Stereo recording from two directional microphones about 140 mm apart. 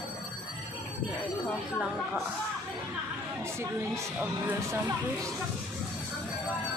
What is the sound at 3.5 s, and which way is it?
Speech, 15° right (ahead or behind).